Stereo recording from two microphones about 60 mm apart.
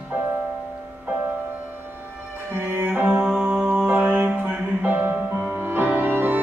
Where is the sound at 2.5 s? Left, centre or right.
Right.